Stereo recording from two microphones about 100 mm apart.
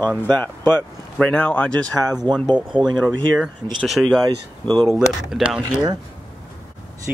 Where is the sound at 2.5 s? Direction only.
50° right (ahead or behind).